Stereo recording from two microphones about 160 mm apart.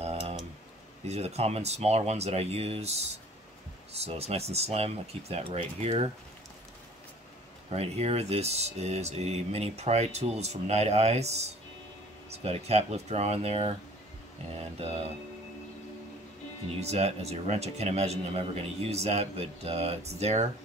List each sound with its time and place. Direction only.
0.0 s a sound: 40° right (ahead or behind)
1.0 s speech: 40° right (ahead or behind)
7.7 s speech: 40° right (ahead or behind)
16.8 s speech: 40° right (ahead or behind)